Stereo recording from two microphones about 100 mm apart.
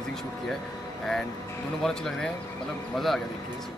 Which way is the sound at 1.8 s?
5° left (ahead or behind).